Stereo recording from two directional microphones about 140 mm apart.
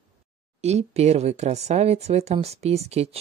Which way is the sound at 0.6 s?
50° right (ahead or behind).